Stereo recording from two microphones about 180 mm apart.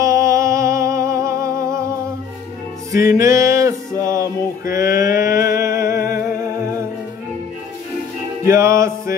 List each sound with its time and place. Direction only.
0.0 s music: 15° right (ahead or behind)
2.9 s male singing: 15° right (ahead or behind)
5.3 s a sound: 15° right (ahead or behind)
6.2 s humming: 15° right (ahead or behind)
8.5 s male singing: 15° right (ahead or behind)